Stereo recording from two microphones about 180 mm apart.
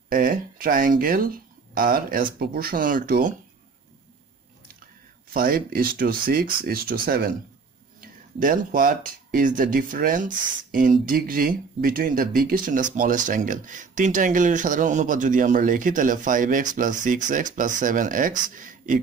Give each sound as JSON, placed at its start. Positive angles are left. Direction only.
{"t": 0.1, "sound": "speech", "side_deg": -50}
{"t": 5.3, "sound": "speech", "side_deg": -55}